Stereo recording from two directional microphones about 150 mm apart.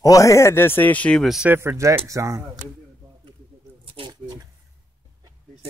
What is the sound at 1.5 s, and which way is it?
Speech, 15° right (ahead or behind).